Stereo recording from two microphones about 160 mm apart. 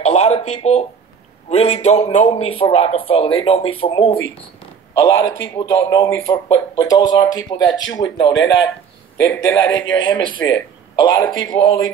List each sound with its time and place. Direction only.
0.0 s a sound: 45° left (ahead or behind)
1.5 s a man's voice: 40° left (ahead or behind)
4.9 s speech: 25° left (ahead or behind)
9.3 s a man's voice: 10° left (ahead or behind)
10.0 s a man's voice: 25° left (ahead or behind)
11.5 s a man's voice: 35° left (ahead or behind)